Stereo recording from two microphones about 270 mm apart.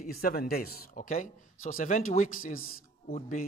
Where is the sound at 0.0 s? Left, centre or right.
Left.